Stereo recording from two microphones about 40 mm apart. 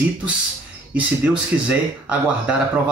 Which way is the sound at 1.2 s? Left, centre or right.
Right.